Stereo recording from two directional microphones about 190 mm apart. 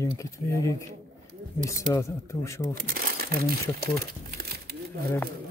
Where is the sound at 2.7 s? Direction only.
50° right (ahead or behind).